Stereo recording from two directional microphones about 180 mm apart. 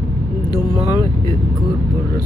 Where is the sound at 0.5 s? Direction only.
25° left (ahead or behind).